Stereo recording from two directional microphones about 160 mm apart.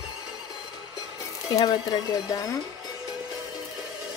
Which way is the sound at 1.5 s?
25° left (ahead or behind).